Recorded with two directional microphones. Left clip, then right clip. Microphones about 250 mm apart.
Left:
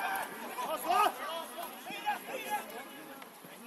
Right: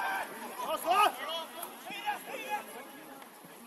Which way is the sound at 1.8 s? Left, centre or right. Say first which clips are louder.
Even; centre.